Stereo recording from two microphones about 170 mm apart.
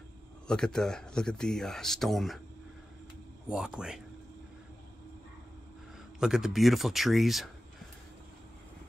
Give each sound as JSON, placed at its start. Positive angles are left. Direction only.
{"t": 0.5, "sound": "speech", "side_deg": 5}
{"t": 3.4, "sound": "speech", "side_deg": -5}
{"t": 6.1, "sound": "speech", "side_deg": -5}